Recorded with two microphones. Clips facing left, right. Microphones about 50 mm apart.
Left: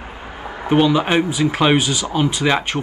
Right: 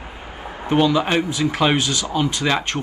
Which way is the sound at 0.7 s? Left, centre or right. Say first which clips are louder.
Left 2 dB; centre.